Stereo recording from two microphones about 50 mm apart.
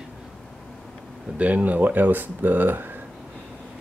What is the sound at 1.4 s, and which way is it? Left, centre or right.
Speech, right.